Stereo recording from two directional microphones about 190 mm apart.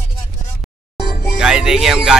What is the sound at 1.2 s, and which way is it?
Music, 5° right (ahead or behind).